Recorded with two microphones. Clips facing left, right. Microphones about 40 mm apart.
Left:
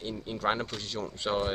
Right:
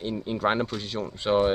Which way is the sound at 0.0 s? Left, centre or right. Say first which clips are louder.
Right 5 dB; centre.